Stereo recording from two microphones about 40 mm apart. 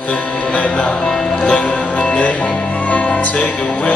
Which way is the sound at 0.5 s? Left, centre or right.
Left.